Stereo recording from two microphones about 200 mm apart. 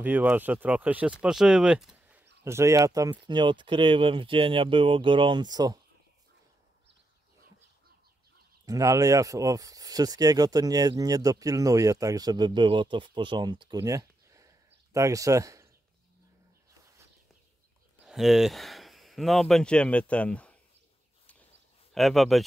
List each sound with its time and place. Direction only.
0.0 s speech: 10° right (ahead or behind)
8.6 s speech: 15° right (ahead or behind)
18.0 s speech: centre (ahead or behind)
21.9 s speech: centre (ahead or behind)